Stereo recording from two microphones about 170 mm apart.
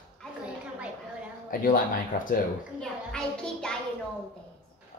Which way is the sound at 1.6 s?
55° left (ahead or behind).